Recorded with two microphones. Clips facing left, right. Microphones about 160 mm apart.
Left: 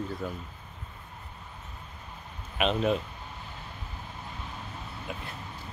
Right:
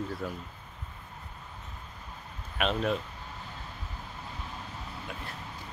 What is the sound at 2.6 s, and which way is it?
Speech, 5° left (ahead or behind).